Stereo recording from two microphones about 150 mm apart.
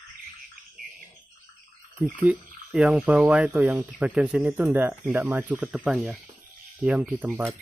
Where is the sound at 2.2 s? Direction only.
10° right (ahead or behind).